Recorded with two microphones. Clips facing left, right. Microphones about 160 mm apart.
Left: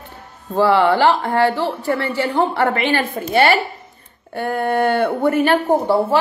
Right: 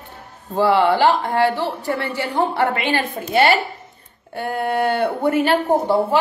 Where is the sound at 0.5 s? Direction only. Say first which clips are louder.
Left 1 dB; 15° right (ahead or behind).